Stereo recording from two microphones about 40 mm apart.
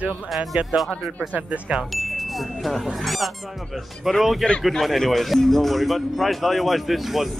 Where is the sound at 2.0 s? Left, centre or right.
Centre.